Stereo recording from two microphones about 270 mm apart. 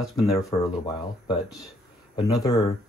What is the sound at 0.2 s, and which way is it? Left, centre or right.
Speech, centre.